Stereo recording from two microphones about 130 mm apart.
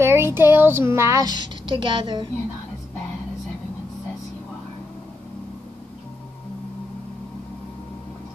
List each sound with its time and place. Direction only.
0.0 s a woman's voice: 20° right (ahead or behind); by 2.2 s 35° right (ahead or behind)